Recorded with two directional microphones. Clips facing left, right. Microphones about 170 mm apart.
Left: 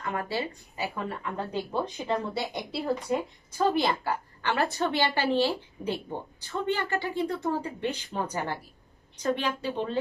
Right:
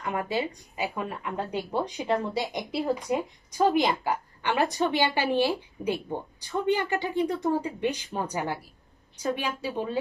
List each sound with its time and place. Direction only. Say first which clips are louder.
0.0 s speech: right 2 dB; 15° right (ahead or behind)